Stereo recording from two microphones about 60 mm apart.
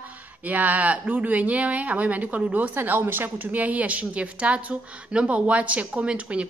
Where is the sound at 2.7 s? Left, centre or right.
Right.